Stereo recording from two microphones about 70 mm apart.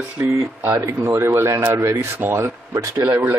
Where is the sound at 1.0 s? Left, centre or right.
Right.